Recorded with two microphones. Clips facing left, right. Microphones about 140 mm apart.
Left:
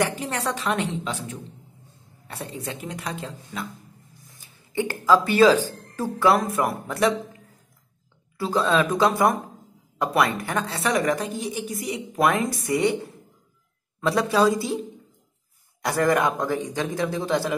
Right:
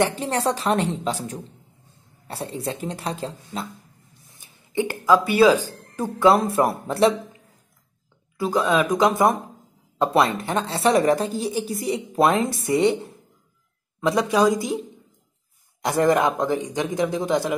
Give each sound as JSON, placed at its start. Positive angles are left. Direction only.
{"t": 0.2, "sound": "speech", "side_deg": -30}
{"t": 4.4, "sound": "speech", "side_deg": -15}
{"t": 8.4, "sound": "a woman's voice", "side_deg": -15}
{"t": 15.8, "sound": "a woman's voice", "side_deg": -20}